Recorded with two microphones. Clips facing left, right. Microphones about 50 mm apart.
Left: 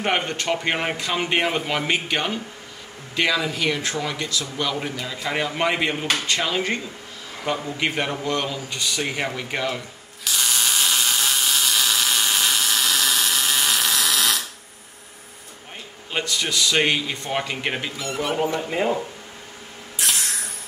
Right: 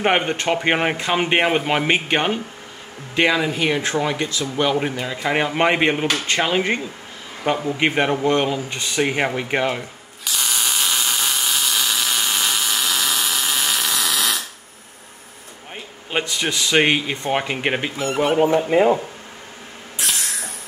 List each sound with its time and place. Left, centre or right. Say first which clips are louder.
0.0 s a man's voice: right 5 dB; right
10.4 s electric toothbrush: even; centre
16.1 s speech: right 3 dB; right
20.0 s music: even; centre